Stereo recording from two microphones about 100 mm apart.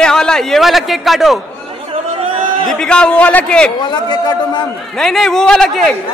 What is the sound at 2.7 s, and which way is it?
A man's voice, 5° left (ahead or behind).